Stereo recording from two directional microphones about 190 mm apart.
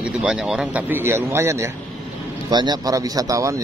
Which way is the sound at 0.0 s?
5° right (ahead or behind).